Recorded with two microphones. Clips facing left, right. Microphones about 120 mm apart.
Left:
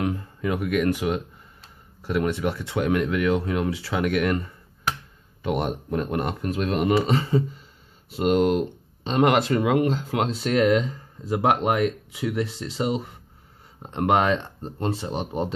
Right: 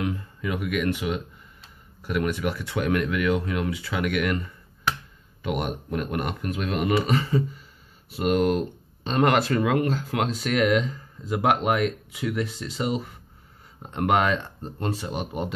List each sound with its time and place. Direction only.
0.0 s speech: 35° left (ahead or behind)